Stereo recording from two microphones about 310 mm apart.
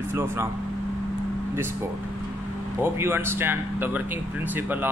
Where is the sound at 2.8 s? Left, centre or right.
Centre.